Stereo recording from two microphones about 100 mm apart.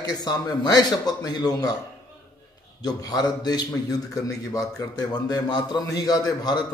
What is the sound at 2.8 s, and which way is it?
A man's voice, 40° left (ahead or behind).